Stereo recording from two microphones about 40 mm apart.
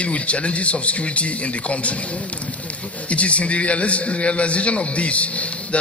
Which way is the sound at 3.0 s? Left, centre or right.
Left.